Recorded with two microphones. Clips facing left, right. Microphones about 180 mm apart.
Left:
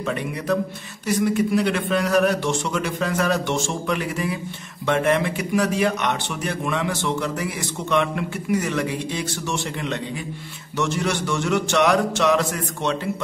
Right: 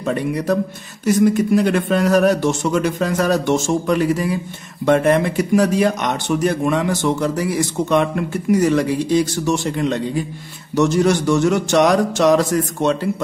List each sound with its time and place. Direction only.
1.0 s a man's voice: 45° right (ahead or behind)